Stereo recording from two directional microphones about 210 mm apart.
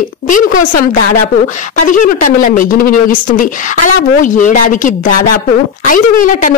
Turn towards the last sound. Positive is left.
turn(degrees=40)  # may be behind; listen again after turning